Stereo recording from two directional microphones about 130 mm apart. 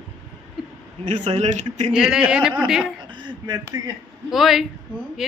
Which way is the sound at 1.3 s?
60° right (ahead or behind).